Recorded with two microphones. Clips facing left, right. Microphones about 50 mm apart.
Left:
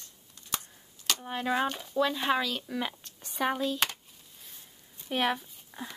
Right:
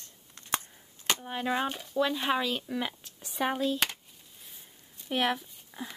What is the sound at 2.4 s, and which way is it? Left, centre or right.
Speech, centre.